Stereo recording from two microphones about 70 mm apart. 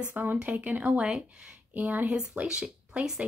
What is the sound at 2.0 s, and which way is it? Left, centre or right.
Speech, centre.